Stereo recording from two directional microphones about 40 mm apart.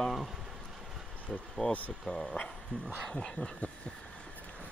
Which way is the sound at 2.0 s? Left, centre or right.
Centre.